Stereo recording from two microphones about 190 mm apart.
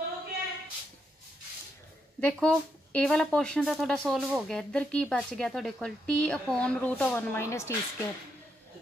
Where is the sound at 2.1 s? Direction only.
5° left (ahead or behind).